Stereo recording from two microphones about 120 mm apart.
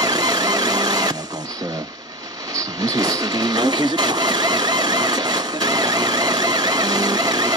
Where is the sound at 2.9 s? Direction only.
30° right (ahead or behind).